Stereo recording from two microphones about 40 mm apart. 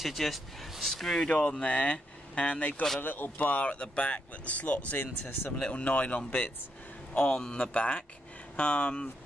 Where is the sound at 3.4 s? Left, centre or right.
Left.